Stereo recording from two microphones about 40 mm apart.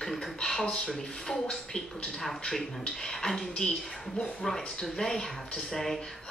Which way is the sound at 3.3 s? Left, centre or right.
Centre.